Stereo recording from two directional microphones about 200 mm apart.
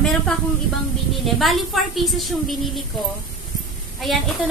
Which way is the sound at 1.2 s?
Centre (ahead or behind).